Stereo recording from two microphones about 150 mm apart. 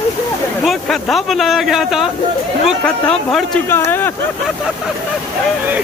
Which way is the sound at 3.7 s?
15° left (ahead or behind).